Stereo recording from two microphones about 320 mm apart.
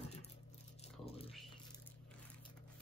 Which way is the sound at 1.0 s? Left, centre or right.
Centre.